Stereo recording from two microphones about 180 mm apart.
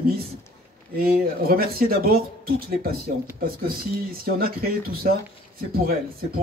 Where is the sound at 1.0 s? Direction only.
55° right (ahead or behind).